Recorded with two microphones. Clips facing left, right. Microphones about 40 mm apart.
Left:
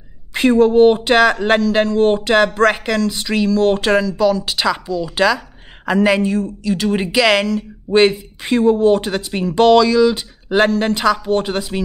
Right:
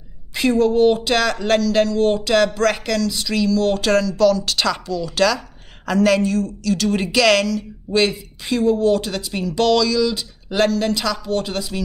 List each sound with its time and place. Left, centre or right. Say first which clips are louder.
0.3 s speech: left 4 dB; left
7.4 s speech: left 3 dB; left